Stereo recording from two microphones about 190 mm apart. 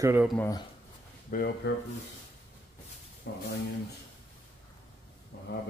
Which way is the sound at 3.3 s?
65° left (ahead or behind).